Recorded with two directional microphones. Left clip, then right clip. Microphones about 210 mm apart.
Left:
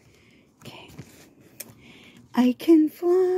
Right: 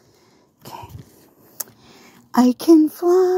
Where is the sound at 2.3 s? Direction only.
35° right (ahead or behind).